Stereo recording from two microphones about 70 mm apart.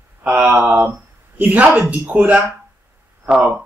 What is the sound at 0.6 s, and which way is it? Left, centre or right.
Speech, right.